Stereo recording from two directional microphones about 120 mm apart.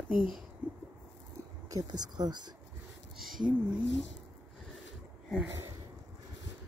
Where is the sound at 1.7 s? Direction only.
35° right (ahead or behind).